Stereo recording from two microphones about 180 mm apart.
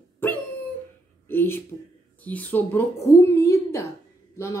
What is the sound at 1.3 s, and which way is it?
Speech, 10° left (ahead or behind).